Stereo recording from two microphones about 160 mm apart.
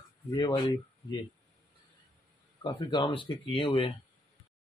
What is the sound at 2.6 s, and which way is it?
Speech, 30° left (ahead or behind).